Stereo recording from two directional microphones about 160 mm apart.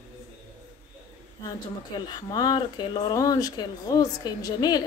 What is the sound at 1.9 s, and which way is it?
Speech, 25° left (ahead or behind).